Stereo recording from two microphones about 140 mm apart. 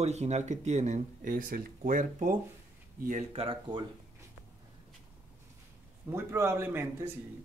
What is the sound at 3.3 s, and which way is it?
Speech, 40° right (ahead or behind).